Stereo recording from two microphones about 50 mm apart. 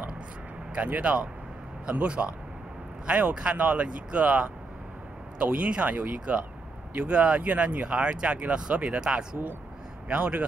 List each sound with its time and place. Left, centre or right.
0.7 s speech: right
10.0 s speech: right